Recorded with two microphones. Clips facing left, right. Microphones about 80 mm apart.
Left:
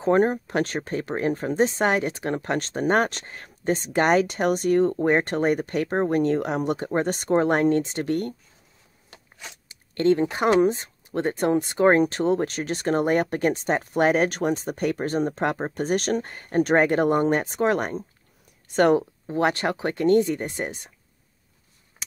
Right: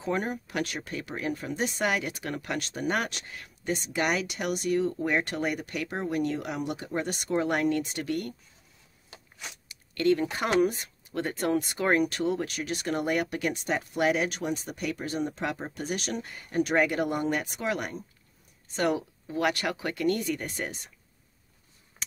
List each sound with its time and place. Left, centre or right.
0.0 s speech: left
9.7 s speech: left